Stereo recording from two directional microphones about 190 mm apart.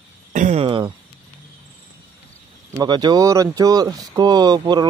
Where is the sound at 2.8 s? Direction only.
20° right (ahead or behind).